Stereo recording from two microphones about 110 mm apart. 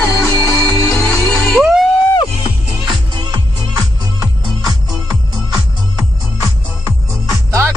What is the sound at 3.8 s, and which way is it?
Music, 35° right (ahead or behind).